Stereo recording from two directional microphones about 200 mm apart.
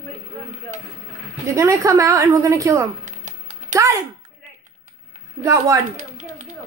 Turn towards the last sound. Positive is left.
turn(degrees=-15)  # may be behind; listen again after turning